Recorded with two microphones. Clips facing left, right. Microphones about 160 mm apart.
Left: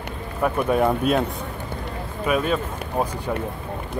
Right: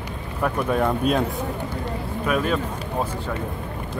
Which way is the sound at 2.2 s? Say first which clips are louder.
Left 1 dB; centre (ahead or behind).